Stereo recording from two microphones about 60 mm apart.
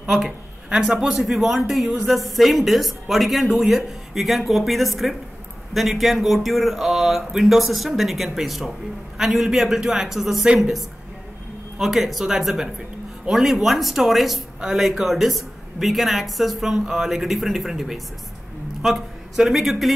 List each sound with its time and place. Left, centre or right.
0.7 s a man's voice: centre
11.8 s speech: centre